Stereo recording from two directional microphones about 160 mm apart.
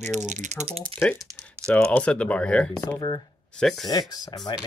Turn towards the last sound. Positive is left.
turn(degrees=25)  # may be behind; listen again after turning